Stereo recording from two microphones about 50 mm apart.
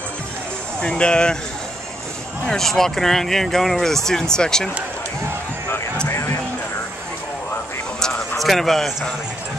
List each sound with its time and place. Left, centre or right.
0.7 s speech: centre
2.4 s speech: centre
6.0 s a sound: left
8.4 s a man's voice: centre